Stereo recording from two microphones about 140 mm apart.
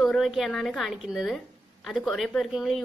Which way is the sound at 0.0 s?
Centre (ahead or behind).